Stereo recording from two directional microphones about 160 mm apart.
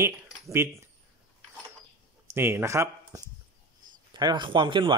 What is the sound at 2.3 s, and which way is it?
Speech, 15° right (ahead or behind).